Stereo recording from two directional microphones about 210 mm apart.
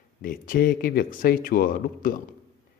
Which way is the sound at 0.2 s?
40° left (ahead or behind).